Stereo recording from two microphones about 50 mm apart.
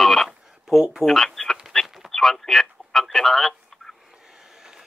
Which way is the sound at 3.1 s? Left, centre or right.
Centre.